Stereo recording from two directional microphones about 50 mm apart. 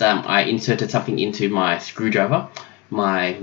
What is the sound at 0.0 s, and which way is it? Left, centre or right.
Speech, right.